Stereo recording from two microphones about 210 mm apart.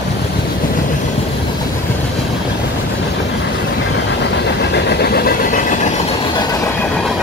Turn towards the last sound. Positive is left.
turn(degrees=40)  # may be behind; listen again after turning